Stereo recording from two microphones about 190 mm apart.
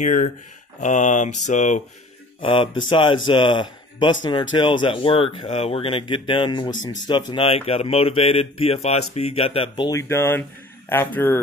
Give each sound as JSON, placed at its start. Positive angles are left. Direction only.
{"t": 0.0, "sound": "speech", "side_deg": 45}
{"t": 2.4, "sound": "speech", "side_deg": 30}